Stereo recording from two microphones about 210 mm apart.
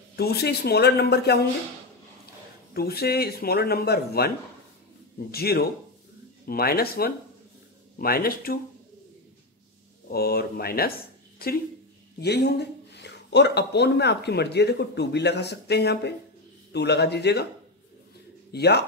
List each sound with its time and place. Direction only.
0.1 s speech: 50° left (ahead or behind)
2.7 s speech: 45° left (ahead or behind)
5.3 s speech: 50° left (ahead or behind)
10.1 s speech: 45° left (ahead or behind)
18.5 s speech: 50° left (ahead or behind)